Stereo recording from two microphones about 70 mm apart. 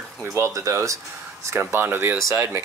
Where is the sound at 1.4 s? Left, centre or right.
Right.